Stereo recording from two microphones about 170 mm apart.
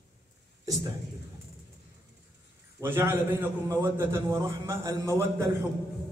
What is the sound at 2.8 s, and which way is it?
A man's voice, 15° right (ahead or behind).